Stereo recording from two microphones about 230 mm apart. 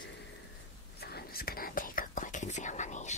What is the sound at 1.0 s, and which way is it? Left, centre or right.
Whispering, left.